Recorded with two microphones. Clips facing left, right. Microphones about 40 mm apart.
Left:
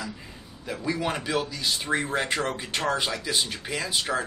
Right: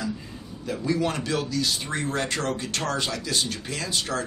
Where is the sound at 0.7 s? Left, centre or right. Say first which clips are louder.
Right 3 dB; centre.